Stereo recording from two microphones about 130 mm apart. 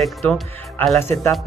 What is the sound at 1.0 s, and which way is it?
Speech, 20° left (ahead or behind).